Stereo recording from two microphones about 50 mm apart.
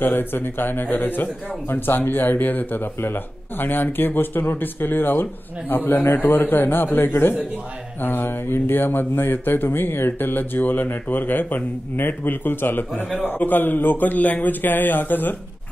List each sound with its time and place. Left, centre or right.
0.0 s speech: left